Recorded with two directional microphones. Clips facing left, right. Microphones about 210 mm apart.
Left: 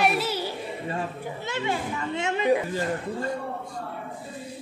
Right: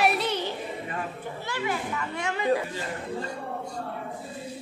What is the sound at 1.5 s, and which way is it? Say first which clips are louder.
Speech: left 1 dB; 25° left (ahead or behind).